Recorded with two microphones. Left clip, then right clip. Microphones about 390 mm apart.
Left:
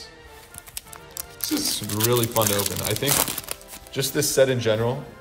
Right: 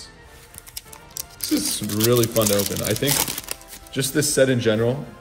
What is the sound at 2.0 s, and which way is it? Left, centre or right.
A man's voice, centre.